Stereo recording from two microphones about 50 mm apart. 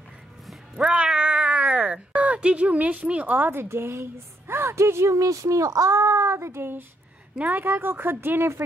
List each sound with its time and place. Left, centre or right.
0.7 s cat: right
2.1 s a woman's voice: right
7.3 s a woman's voice: right
7.6 s speech: right